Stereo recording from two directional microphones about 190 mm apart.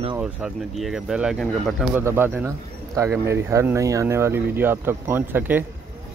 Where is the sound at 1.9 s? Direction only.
10° right (ahead or behind).